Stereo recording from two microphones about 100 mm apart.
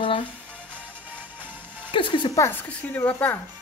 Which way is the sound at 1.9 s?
55° left (ahead or behind).